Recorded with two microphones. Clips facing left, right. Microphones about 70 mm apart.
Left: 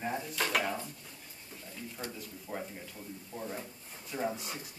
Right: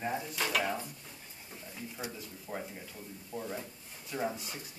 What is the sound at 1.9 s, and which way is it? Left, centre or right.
Speech, centre.